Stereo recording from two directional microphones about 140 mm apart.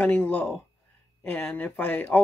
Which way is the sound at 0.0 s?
10° left (ahead or behind).